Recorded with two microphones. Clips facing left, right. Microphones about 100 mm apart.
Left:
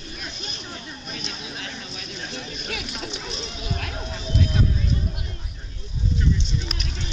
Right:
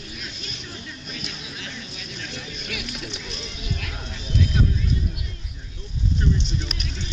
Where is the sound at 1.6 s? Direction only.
40° left (ahead or behind).